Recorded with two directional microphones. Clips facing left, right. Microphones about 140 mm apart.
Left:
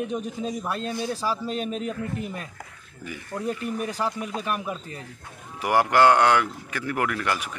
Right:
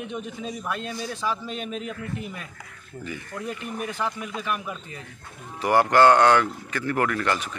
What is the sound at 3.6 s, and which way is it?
A man's voice, 40° left (ahead or behind).